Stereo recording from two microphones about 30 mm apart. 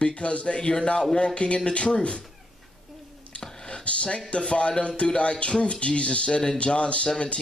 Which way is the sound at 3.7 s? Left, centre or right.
Left.